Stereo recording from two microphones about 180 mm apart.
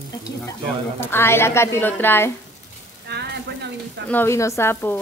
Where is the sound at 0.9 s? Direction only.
15° left (ahead or behind).